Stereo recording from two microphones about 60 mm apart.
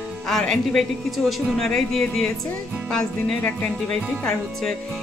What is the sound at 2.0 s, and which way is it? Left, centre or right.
Speech, centre.